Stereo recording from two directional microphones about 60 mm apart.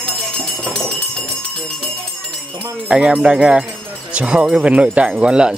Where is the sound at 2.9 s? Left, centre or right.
Centre.